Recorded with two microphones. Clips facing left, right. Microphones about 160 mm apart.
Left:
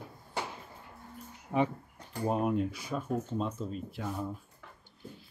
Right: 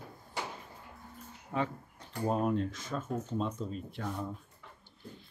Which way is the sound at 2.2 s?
10° left (ahead or behind).